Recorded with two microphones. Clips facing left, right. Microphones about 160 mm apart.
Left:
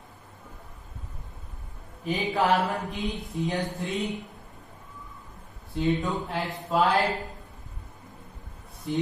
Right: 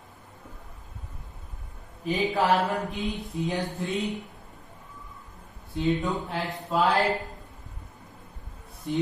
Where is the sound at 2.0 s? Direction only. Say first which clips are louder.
Right 2 dB; centre (ahead or behind).